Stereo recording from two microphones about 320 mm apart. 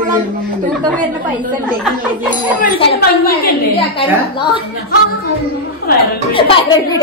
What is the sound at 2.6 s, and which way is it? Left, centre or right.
Speech, left.